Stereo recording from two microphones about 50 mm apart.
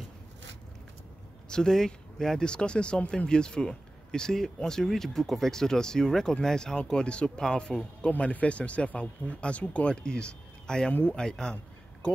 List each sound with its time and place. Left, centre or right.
1.5 s speech: centre
8.1 s speech: left
10.9 s speech: left
11.1 s speech: centre